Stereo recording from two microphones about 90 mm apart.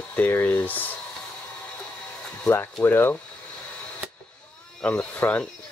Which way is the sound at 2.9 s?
25° left (ahead or behind).